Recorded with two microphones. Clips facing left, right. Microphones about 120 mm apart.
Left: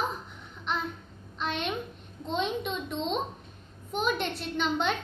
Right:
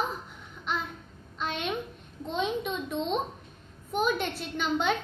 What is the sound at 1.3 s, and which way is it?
A woman's voice, 5° right (ahead or behind).